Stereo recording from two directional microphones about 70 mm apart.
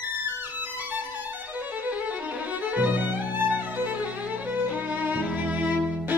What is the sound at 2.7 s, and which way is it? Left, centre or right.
Violin, right.